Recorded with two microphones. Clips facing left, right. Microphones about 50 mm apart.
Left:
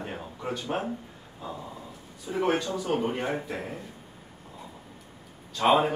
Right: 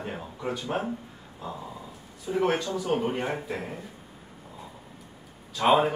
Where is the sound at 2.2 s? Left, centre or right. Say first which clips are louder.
Right 1 dB; centre.